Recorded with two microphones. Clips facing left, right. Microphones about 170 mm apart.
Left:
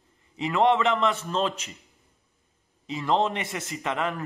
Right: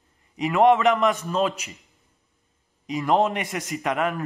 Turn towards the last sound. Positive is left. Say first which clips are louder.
# right 4 dB
turn(degrees=-15)  # may be behind; listen again after turning